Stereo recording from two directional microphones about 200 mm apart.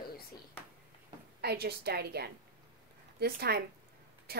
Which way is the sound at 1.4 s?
55° right (ahead or behind).